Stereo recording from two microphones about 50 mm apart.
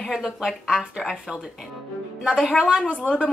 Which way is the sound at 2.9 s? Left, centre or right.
Right.